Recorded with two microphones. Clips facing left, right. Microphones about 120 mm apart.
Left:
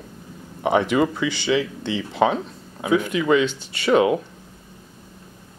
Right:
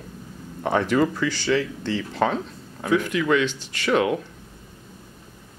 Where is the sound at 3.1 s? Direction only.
20° left (ahead or behind).